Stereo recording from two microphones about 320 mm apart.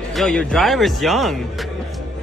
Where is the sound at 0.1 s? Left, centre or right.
Centre.